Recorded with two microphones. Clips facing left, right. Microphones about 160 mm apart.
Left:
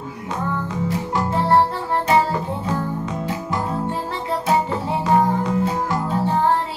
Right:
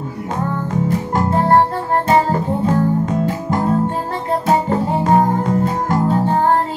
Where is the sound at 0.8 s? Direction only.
45° right (ahead or behind).